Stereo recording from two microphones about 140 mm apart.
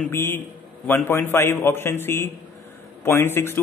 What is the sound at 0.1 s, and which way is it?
A man's voice, 15° left (ahead or behind).